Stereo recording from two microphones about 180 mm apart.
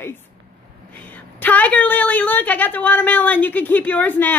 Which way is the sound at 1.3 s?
10° left (ahead or behind).